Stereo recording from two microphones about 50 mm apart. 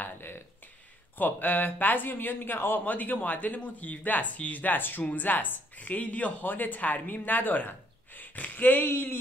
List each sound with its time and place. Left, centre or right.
0.0 s a sound: left
1.1 s speech: left
2.8 s speech: left